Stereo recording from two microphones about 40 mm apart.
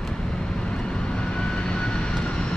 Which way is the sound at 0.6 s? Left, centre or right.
Left.